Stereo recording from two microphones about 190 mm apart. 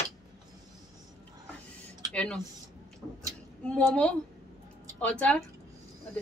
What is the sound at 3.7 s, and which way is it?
A woman's voice, 5° left (ahead or behind).